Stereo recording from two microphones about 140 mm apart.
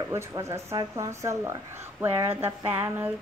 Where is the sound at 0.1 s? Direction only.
20° right (ahead or behind).